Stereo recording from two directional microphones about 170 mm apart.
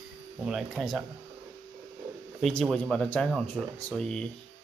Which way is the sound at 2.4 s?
5° left (ahead or behind).